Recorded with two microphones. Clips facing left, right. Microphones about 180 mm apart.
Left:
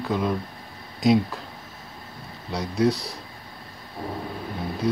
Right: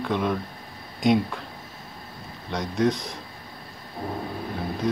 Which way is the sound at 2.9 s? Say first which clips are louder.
Left 1 dB; 35° left (ahead or behind).